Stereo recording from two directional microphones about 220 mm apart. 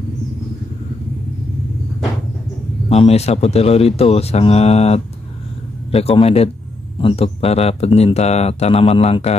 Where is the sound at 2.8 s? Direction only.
30° left (ahead or behind).